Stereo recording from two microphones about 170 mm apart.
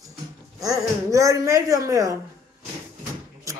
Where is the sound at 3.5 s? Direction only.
20° right (ahead or behind).